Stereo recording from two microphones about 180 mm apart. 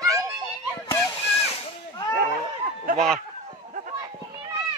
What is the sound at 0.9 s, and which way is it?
Water, 15° left (ahead or behind).